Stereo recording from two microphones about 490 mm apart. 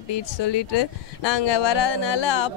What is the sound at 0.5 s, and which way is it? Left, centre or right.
Speech, left.